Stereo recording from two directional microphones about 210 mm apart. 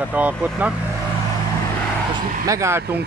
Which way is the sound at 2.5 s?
15° right (ahead or behind).